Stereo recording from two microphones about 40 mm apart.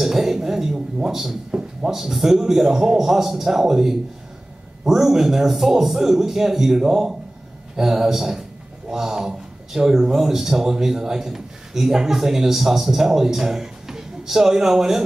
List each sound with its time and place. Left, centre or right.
0.0 s chink: centre
1.5 s a sound: right
1.9 s a man's voice: centre